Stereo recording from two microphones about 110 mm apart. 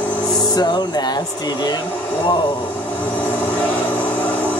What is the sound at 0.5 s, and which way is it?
Speech, 40° left (ahead or behind).